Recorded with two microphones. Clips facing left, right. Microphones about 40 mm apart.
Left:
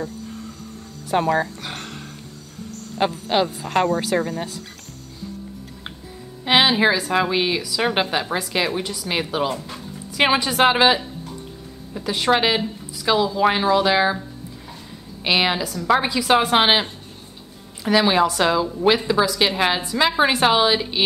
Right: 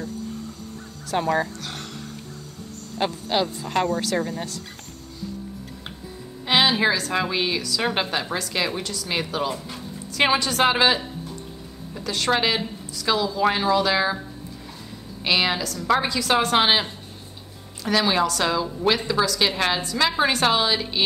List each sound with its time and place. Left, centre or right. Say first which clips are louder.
1.0 s a woman's voice: left 3 dB; centre
1.6 s a sound: left 2 dB; centre
3.0 s a woman's voice: left 3 dB; centre
6.4 s a woman's voice: left 3 dB; centre
15.2 s a woman's voice: left 2 dB; centre